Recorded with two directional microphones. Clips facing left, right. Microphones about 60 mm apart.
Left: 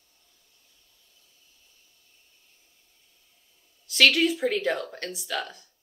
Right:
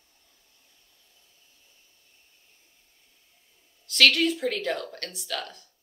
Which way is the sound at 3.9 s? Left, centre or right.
Centre.